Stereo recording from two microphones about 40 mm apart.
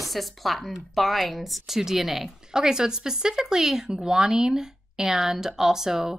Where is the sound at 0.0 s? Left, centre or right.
Centre.